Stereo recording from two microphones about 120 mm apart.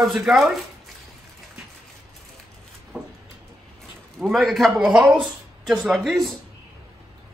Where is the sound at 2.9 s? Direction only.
5° right (ahead or behind).